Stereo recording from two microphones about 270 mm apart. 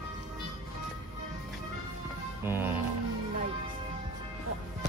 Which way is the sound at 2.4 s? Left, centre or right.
Centre.